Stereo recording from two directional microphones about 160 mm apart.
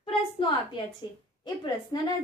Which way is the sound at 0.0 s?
30° left (ahead or behind).